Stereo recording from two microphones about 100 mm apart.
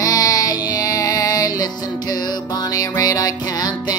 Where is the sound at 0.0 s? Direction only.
35° left (ahead or behind).